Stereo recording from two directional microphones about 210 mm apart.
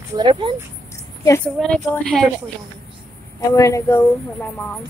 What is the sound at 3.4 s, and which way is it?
Speech, 15° left (ahead or behind).